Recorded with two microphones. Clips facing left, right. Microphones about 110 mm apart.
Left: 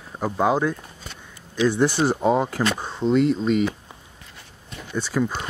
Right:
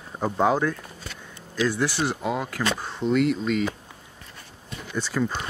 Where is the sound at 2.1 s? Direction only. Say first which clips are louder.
Left 7 dB; 35° left (ahead or behind).